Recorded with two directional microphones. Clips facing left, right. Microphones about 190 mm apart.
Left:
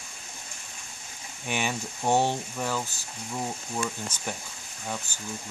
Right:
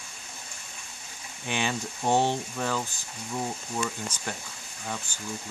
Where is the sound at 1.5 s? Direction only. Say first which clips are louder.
Even; 15° left (ahead or behind).